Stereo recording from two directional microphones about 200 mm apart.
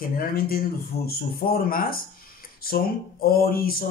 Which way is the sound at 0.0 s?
45° left (ahead or behind).